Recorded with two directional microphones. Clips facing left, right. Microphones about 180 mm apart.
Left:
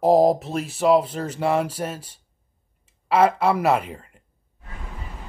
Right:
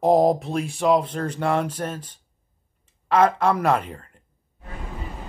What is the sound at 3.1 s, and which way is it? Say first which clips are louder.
Speech: even; 5° left (ahead or behind).